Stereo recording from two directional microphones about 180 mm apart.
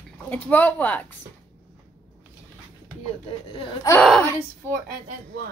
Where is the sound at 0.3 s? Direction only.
10° left (ahead or behind).